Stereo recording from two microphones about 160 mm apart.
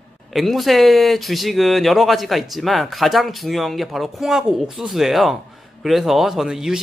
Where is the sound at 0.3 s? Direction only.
Centre (ahead or behind).